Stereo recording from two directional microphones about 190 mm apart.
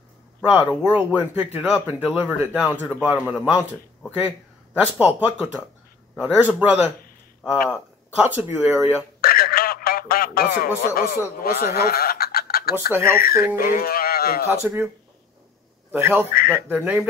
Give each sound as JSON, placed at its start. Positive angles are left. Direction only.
{"t": 0.5, "sound": "a man's voice", "side_deg": -5}
{"t": 4.9, "sound": "a man's voice", "side_deg": -10}
{"t": 8.2, "sound": "a man's voice", "side_deg": -10}
{"t": 9.2, "sound": "telephone", "side_deg": 50}
{"t": 11.0, "sound": "speech", "side_deg": 50}
{"t": 12.7, "sound": "a man's voice", "side_deg": -10}
{"t": 13.6, "sound": "speech", "side_deg": 50}
{"t": 14.5, "sound": "a man's voice", "side_deg": -10}
{"t": 15.9, "sound": "a man's voice", "side_deg": -10}